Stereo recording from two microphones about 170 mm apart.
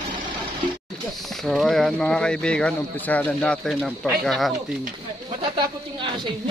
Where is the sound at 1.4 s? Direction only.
Centre (ahead or behind).